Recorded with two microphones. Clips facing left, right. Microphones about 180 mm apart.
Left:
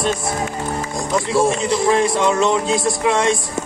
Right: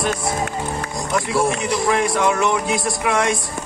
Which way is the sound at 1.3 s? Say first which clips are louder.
Left 4 dB; 25° left (ahead or behind).